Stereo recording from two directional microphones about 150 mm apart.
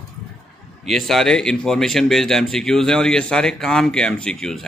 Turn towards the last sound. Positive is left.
turn(degrees=5)  # may be behind; listen again after turning